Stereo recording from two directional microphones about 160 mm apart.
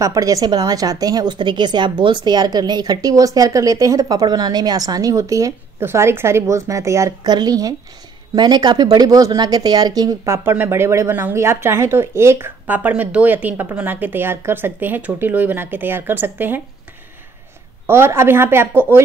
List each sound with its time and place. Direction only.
0.0 s a woman's voice: 20° right (ahead or behind)
17.8 s speech: 15° right (ahead or behind)